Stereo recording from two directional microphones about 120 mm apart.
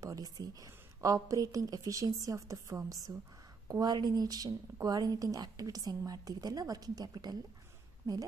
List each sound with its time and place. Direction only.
0.0 s a woman's voice: 30° right (ahead or behind)